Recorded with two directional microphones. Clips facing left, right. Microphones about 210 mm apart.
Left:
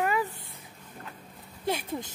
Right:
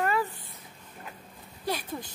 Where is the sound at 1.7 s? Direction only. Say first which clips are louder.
Left 2 dB; 25° left (ahead or behind).